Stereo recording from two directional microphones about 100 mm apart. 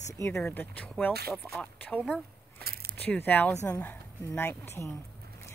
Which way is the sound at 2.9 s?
15° left (ahead or behind).